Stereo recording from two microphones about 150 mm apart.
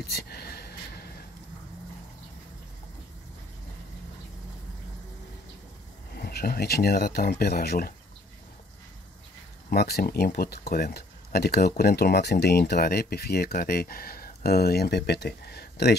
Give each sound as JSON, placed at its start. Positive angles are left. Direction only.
{"t": 0.0, "sound": "a sound", "side_deg": 90}
{"t": 6.1, "sound": "speech", "side_deg": 90}
{"t": 9.7, "sound": "speech", "side_deg": 90}